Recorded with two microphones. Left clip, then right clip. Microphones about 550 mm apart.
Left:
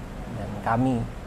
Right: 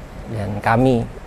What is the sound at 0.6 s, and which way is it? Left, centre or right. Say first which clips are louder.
Speech: right 9 dB; right.